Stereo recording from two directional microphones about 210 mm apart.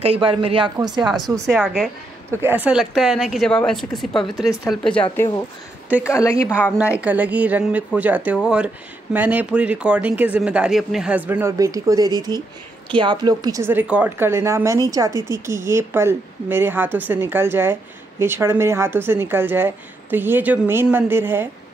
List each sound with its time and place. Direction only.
0.0 s speech: 25° right (ahead or behind)
1.2 s a woman's voice: centre (ahead or behind)
6.8 s speech: 5° right (ahead or behind)
15.1 s a woman's voice: 20° left (ahead or behind)
15.4 s speech: 10° right (ahead or behind)